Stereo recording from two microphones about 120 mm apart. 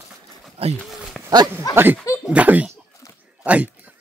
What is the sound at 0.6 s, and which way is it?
Speech, 55° right (ahead or behind).